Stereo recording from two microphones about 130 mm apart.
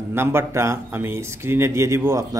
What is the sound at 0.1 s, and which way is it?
A man's voice, 20° right (ahead or behind).